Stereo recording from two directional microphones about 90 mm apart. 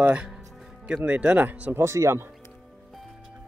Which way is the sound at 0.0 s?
15° right (ahead or behind).